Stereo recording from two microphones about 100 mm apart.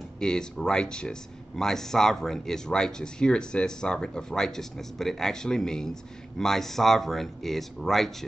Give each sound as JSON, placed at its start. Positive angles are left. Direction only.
{"t": 0.2, "sound": "speech", "side_deg": 5}